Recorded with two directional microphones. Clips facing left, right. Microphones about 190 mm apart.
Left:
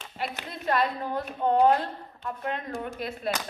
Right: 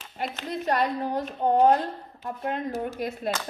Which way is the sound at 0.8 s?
15° right (ahead or behind).